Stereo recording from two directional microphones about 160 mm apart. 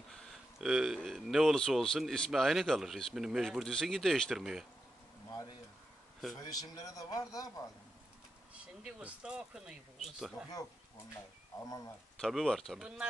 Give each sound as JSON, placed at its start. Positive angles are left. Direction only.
{"t": 0.1, "sound": "speech", "side_deg": 0}
{"t": 6.3, "sound": "speech", "side_deg": 20}
{"t": 8.8, "sound": "speech", "side_deg": -5}
{"t": 11.6, "sound": "speech", "side_deg": 25}
{"t": 12.2, "sound": "speech", "side_deg": 5}